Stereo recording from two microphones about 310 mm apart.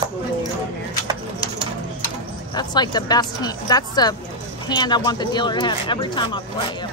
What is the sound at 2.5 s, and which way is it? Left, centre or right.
Speech, centre.